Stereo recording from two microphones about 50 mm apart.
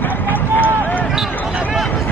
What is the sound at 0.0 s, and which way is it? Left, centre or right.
Run, left.